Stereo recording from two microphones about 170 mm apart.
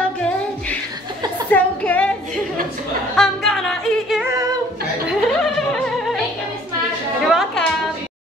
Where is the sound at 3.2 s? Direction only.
5° left (ahead or behind).